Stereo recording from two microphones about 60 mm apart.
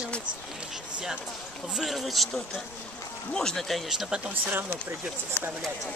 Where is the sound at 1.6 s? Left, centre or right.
Centre.